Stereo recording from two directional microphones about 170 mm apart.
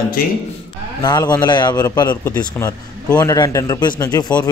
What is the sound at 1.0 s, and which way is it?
A man's voice, 25° left (ahead or behind).